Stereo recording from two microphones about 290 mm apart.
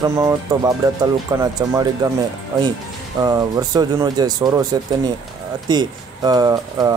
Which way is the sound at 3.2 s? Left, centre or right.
Centre.